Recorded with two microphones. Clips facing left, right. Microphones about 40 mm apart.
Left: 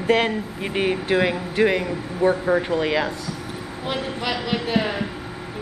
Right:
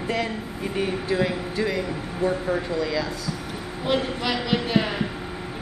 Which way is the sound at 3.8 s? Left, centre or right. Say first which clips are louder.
Right 2 dB; centre.